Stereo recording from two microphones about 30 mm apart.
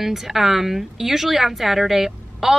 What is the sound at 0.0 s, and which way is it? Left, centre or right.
A woman's voice, centre.